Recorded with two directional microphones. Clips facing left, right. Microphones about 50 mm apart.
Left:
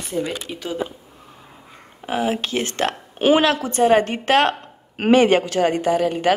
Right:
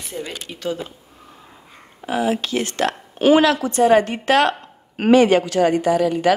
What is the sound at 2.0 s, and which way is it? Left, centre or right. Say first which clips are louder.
Speech: right 1 dB; left.